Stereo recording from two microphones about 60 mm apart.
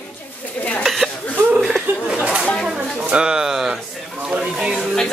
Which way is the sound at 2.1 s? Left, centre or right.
Centre.